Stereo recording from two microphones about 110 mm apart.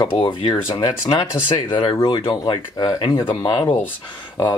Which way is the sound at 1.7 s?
50° left (ahead or behind).